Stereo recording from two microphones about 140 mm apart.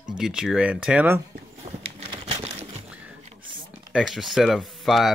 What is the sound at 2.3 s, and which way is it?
Crumpling, 40° right (ahead or behind).